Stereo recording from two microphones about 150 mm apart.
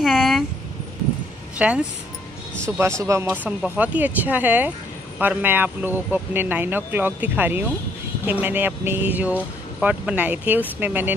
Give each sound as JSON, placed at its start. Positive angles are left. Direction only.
{"t": 0.0, "sound": "a sound", "side_deg": -5}
{"t": 1.6, "sound": "speech", "side_deg": -10}
{"t": 3.0, "sound": "speech", "side_deg": -20}